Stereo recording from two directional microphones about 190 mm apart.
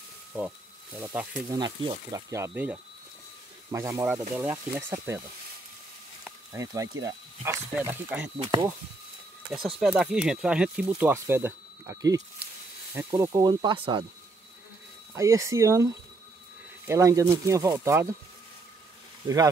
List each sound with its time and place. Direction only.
0.9 s speech: 10° right (ahead or behind)
1.5 s speech: 25° right (ahead or behind)
6.5 s speech: 15° right (ahead or behind)
8.4 s speech: 25° right (ahead or behind)
9.8 s speech: 5° right (ahead or behind); by 14.0 s 25° right (ahead or behind)
15.1 s speech: 15° right (ahead or behind)
19.2 s speech: 20° right (ahead or behind)